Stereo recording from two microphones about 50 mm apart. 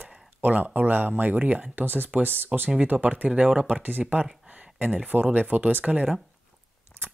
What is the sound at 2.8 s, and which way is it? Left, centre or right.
Speech, right.